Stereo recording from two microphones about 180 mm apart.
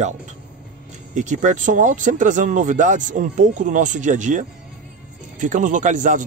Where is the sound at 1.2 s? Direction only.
45° right (ahead or behind).